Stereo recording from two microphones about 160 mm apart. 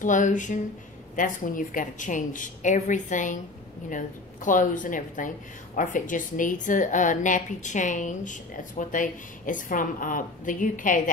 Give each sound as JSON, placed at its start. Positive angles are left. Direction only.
{"t": 0.0, "sound": "a woman's voice", "side_deg": 55}